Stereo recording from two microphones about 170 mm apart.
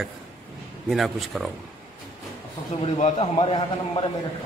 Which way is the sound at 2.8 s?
40° left (ahead or behind).